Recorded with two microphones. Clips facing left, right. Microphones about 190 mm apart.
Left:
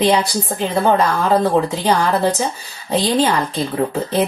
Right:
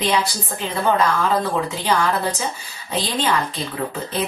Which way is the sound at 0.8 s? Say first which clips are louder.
Left 2 dB; 40° left (ahead or behind).